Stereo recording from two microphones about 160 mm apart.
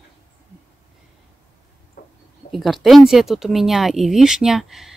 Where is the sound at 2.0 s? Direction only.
70° left (ahead or behind).